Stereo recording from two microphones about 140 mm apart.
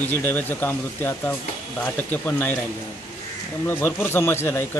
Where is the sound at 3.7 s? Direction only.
15° left (ahead or behind).